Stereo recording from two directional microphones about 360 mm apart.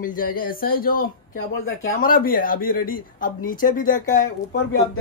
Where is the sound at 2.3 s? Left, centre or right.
Left.